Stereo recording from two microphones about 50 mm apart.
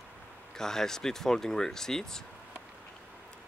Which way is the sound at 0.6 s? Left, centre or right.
Centre.